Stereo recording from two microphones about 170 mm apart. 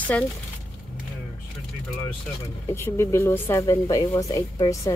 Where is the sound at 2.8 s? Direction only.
15° left (ahead or behind).